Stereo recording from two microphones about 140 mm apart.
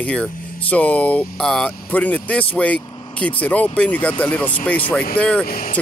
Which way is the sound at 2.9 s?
35° left (ahead or behind).